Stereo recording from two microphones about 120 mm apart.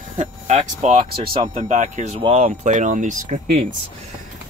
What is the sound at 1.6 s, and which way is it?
Speech, 90° right.